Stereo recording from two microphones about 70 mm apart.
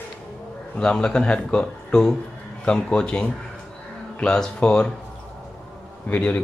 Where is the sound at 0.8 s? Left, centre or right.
Centre.